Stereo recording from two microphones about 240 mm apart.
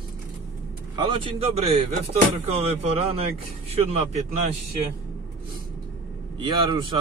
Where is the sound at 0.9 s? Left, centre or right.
Centre.